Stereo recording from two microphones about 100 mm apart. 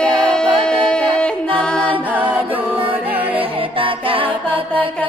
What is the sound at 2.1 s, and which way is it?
Music, 15° right (ahead or behind).